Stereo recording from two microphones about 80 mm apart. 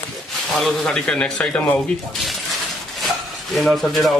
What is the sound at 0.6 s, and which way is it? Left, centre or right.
A man's voice, centre.